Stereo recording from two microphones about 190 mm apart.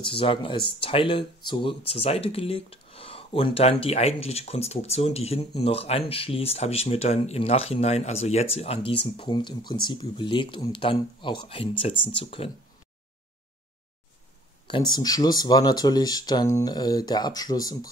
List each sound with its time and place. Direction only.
0.0 s speech: 30° left (ahead or behind)
14.7 s speech: 20° left (ahead or behind)